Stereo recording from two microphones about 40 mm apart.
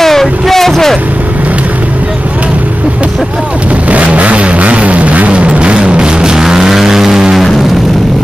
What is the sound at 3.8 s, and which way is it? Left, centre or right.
Vehicle, right.